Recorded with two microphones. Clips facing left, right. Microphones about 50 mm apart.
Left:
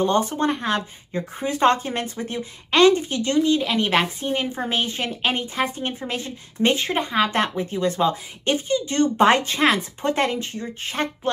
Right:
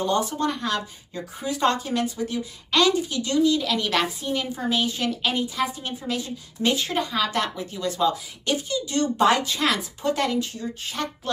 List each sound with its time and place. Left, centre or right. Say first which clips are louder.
0.0 s speech: left 3 dB; left